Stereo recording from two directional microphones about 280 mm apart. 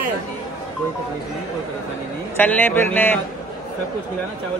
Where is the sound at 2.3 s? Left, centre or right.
Centre.